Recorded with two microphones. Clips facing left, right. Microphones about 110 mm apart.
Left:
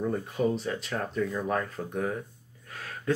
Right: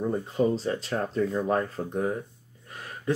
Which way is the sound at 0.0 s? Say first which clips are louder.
Right 2 dB; 25° right (ahead or behind).